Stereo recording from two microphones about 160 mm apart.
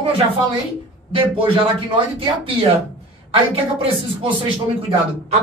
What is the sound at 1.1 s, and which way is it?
A man's voice, 35° right (ahead or behind).